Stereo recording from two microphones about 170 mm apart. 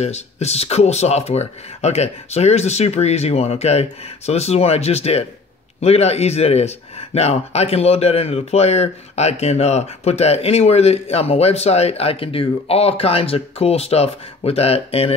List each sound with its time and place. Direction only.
0.0 s speech: 40° left (ahead or behind)